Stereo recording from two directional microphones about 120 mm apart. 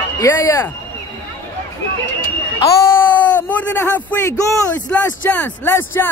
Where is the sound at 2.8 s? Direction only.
15° left (ahead or behind).